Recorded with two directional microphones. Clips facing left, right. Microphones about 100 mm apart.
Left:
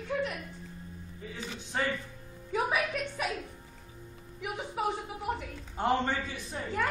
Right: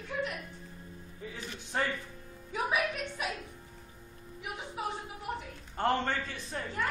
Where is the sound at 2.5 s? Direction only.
40° left (ahead or behind).